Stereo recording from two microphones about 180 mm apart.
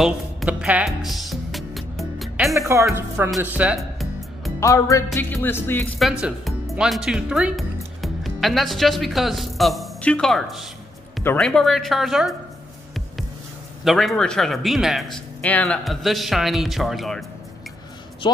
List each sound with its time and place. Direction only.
0.0 s music: 5° right (ahead or behind)
2.5 s speech: 15° right (ahead or behind)
4.6 s music: 15° left (ahead or behind)
5.9 s a woman's voice: 5° right (ahead or behind)
13.8 s speech: centre (ahead or behind)
18.2 s speech: 25° left (ahead or behind)